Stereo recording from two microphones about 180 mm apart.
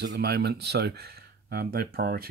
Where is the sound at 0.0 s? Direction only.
70° right (ahead or behind).